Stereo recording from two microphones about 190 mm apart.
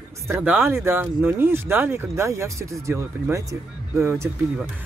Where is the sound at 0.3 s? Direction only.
10° right (ahead or behind).